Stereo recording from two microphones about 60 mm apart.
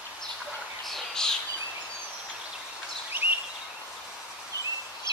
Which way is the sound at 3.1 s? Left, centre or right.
Right.